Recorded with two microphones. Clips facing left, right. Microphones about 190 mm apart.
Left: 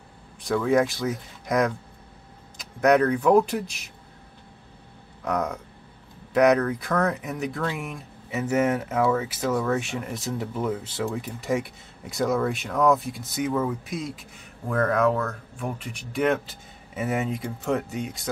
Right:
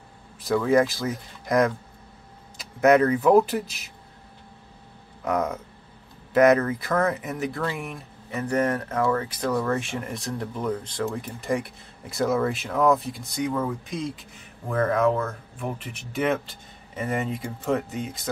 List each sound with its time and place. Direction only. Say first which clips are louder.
0.4 s speech: right 1 dB; centre (ahead or behind)
5.2 s speech: right 1 dB; 5° right (ahead or behind)